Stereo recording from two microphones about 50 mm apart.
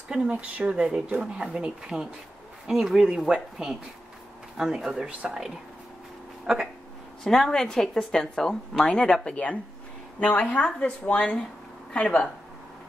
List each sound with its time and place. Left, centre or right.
0.3 s speech: right
0.7 s speech: centre
6.4 s speech: centre
7.2 s speech: centre